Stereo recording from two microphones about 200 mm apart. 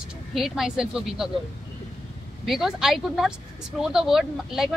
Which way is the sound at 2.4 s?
Centre (ahead or behind).